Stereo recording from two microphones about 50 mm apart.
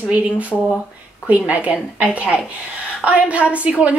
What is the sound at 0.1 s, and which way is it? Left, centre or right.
A woman's voice, right.